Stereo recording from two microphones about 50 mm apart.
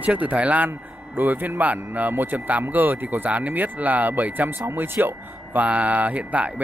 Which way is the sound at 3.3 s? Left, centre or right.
Right.